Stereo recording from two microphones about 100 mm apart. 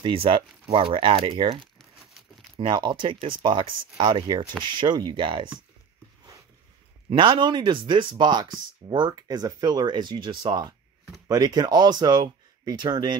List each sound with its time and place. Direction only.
0.0 s speech: 65° right (ahead or behind)
1.6 s crumpling: centre (ahead or behind)
2.5 s speech: 50° right (ahead or behind)
7.1 s speech: 55° right (ahead or behind)